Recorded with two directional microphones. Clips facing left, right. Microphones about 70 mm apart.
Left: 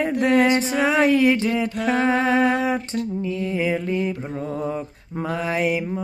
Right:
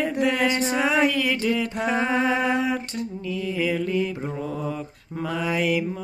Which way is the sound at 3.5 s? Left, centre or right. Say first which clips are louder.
Even; left.